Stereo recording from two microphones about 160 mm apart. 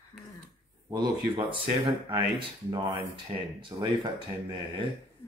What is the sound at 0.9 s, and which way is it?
Speech, 25° right (ahead or behind).